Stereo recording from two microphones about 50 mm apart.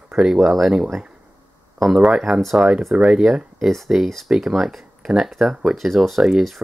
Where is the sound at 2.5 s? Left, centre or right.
Centre.